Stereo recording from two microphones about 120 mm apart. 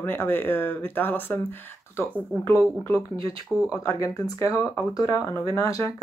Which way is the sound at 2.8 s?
25° left (ahead or behind).